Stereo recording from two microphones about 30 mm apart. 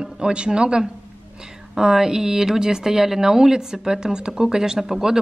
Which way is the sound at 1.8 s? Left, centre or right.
Centre.